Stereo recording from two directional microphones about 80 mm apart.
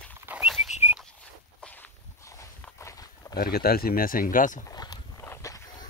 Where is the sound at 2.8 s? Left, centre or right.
Left.